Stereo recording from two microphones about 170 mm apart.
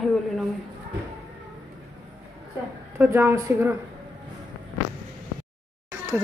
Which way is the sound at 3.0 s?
15° right (ahead or behind).